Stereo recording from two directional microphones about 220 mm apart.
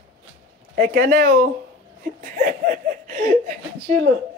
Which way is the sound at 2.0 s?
40° right (ahead or behind).